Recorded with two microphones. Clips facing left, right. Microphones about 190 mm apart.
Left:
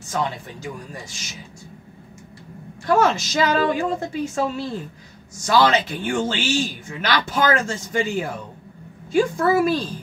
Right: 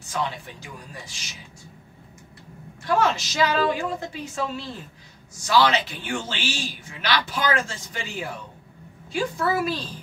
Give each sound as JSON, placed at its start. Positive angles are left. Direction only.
{"t": 0.1, "sound": "a man's voice", "side_deg": 45}
{"t": 3.0, "sound": "a man's voice", "side_deg": 45}